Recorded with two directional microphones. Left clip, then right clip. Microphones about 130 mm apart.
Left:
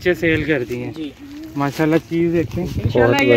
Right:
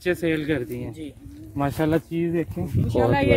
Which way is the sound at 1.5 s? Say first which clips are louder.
Left 5 dB; 90° right.